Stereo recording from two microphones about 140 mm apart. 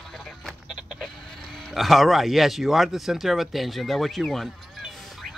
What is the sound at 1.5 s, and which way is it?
Speech, centre (ahead or behind).